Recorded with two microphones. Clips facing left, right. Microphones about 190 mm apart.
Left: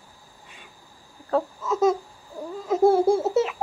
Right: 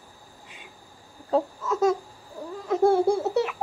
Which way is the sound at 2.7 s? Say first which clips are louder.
Left 2 dB; 5° left (ahead or behind).